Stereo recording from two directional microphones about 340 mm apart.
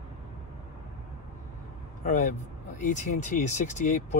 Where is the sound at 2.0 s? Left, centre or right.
Left.